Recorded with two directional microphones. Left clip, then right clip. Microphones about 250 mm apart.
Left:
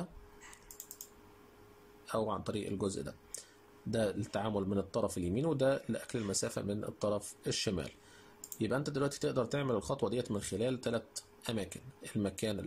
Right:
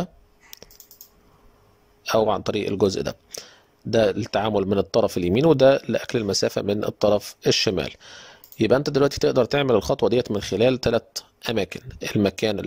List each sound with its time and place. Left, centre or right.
0.5 s typing: right
2.0 s speech: right